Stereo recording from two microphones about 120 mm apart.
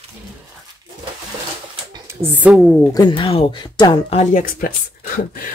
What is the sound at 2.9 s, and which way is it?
Speech, 40° left (ahead or behind).